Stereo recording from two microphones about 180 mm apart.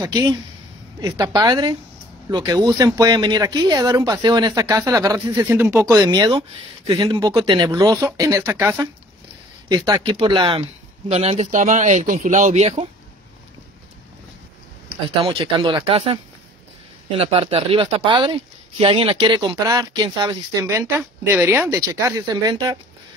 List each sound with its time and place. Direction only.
0.0 s speech: 20° right (ahead or behind)
6.0 s speech: 25° right (ahead or behind)
15.0 s speech: 30° right (ahead or behind)
17.2 s speech: 35° right (ahead or behind)